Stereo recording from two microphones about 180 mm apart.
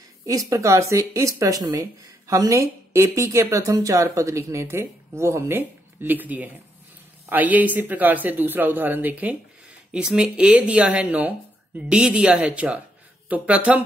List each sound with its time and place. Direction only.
0.2 s speech: 20° right (ahead or behind)